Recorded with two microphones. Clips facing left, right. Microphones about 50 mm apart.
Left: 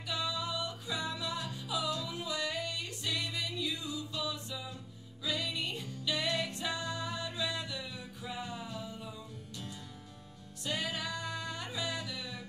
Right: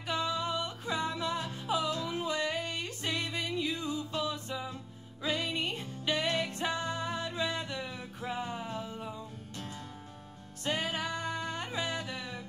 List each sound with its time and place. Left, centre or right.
0.0 s music: right
10.6 s music: right